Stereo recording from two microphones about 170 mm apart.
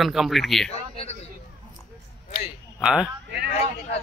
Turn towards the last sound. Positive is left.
turn(degrees=40)  # may be behind; listen again after turning